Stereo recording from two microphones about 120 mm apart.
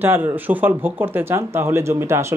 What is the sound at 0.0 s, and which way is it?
Speech, 20° right (ahead or behind).